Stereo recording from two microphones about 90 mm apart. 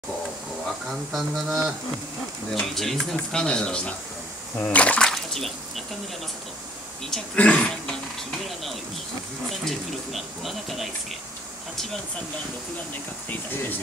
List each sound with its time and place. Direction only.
0.8 s speech: centre (ahead or behind)
5.1 s speech: centre (ahead or behind)
7.1 s speech: 10° left (ahead or behind)
9.5 s speech: centre (ahead or behind)
13.3 s speech: 20° left (ahead or behind)